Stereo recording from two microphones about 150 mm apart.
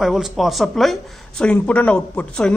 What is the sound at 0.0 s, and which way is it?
A man's voice, centre (ahead or behind).